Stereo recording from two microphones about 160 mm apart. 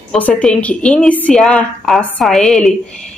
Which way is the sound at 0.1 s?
5° left (ahead or behind).